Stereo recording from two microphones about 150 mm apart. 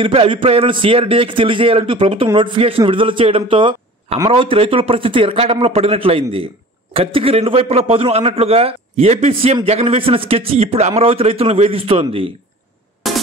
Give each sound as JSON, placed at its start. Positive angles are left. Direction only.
{"t": 0.0, "sound": "a man's voice", "side_deg": -40}
{"t": 13.0, "sound": "music", "side_deg": 0}